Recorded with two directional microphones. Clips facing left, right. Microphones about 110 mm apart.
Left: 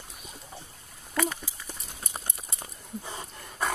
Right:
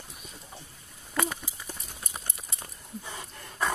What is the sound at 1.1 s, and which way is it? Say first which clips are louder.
Clip-clop: left 1 dB; 15° right (ahead or behind).